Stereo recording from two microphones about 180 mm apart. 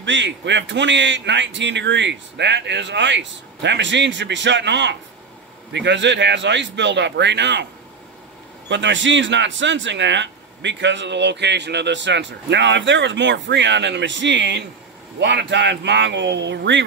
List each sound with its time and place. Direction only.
0.0 s speech: 90° right; by 7.6 s 75° right (ahead or behind)
8.6 s speech: 80° right